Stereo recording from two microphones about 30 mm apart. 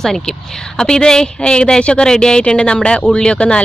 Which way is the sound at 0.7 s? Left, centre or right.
Left.